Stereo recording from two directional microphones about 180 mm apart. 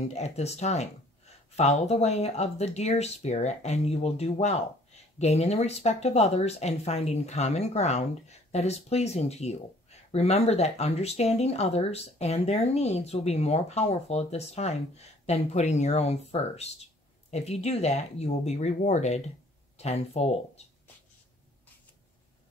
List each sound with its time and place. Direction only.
0.1 s speech: 40° left (ahead or behind)